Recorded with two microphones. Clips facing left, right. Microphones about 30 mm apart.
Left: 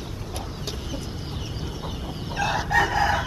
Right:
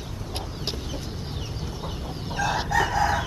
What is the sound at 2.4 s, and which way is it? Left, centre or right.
Chicken, left.